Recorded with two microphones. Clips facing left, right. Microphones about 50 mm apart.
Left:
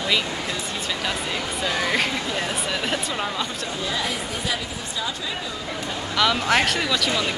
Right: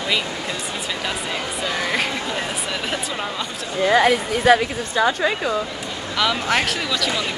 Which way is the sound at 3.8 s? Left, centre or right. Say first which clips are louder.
Right 13 dB; right.